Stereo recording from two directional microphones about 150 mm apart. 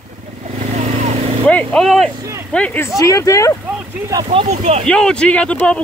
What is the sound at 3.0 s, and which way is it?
Speech, 20° left (ahead or behind).